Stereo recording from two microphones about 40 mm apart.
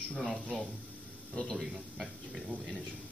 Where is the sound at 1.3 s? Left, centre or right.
Left.